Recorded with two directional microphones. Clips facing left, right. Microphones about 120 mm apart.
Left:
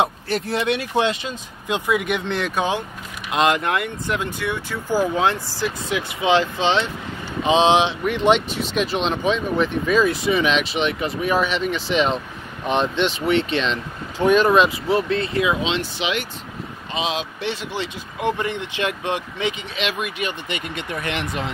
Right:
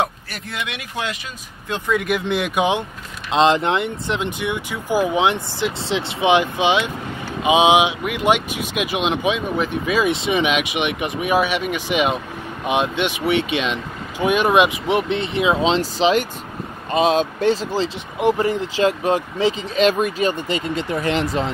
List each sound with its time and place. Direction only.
0.0 s speech: 30° left (ahead or behind)
1.9 s speech: centre (ahead or behind)
3.3 s speech: 25° right (ahead or behind)
15.6 s speech: 40° right (ahead or behind)